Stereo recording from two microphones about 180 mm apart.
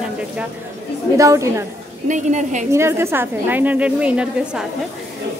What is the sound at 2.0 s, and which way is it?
Speech, 40° right (ahead or behind).